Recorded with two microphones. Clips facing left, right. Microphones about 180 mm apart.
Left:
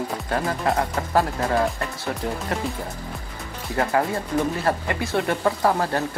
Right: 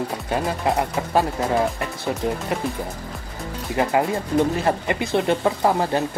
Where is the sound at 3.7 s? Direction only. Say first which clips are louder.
Right 2 dB; 20° right (ahead or behind).